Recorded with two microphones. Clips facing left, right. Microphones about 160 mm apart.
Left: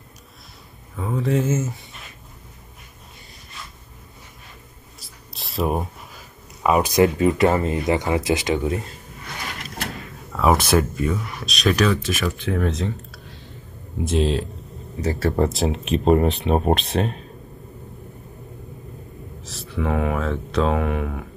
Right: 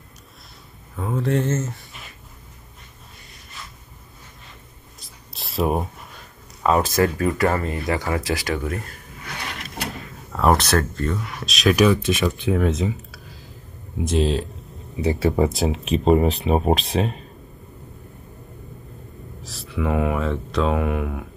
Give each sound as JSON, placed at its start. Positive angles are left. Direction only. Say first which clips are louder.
{"t": 0.9, "sound": "speech", "louder": "even", "side_deg": 0}
{"t": 5.0, "sound": "a sound", "louder": "even", "side_deg": 0}
{"t": 6.7, "sound": "speech", "louder": "left 2 dB", "side_deg": 20}
{"t": 9.2, "sound": "drawer open or close", "louder": "even", "side_deg": 0}
{"t": 11.0, "sound": "speech", "louder": "left 2 dB", "side_deg": 0}
{"t": 11.7, "sound": "speech", "louder": "right 4 dB", "side_deg": -15}
{"t": 12.5, "sound": "a sound", "louder": "right 2 dB", "side_deg": -5}
{"t": 15.1, "sound": "speech", "louder": "even", "side_deg": 0}
{"t": 19.4, "sound": "speech", "louder": "even", "side_deg": 0}